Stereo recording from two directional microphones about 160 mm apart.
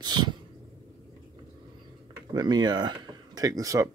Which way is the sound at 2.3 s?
25° right (ahead or behind).